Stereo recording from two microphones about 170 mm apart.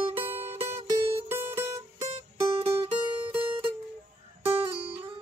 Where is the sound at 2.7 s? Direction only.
10° right (ahead or behind).